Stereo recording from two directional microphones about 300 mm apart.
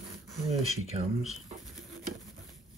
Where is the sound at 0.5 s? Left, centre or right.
Centre.